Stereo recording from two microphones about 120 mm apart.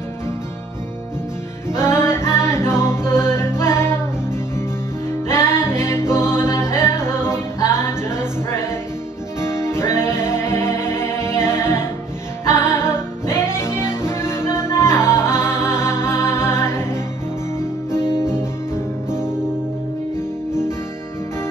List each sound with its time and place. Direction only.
1.9 s music: 20° left (ahead or behind)
19.0 s music: 5° right (ahead or behind)